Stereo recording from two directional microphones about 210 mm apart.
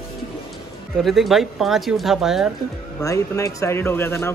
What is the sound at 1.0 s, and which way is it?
A man's voice, centre (ahead or behind).